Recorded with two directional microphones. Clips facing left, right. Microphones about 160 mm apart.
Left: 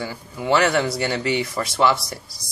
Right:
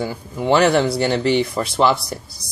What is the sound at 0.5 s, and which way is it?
Speech, 25° right (ahead or behind).